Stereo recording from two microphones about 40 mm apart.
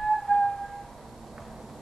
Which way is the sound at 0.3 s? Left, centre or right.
Left.